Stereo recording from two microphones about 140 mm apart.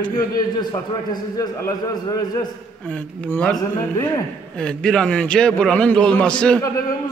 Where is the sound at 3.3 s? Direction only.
10° left (ahead or behind).